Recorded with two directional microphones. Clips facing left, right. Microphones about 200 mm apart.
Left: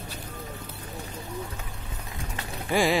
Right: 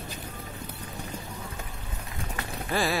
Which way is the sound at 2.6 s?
15° left (ahead or behind).